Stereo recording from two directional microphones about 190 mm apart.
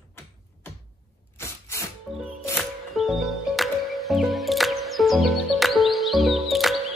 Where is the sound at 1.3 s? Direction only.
15° left (ahead or behind).